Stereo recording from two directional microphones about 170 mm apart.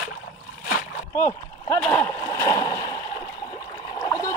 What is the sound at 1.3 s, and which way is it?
Speech, 15° left (ahead or behind).